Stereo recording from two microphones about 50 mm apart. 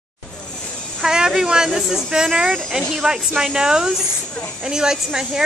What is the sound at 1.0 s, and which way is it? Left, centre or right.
A woman's voice, centre.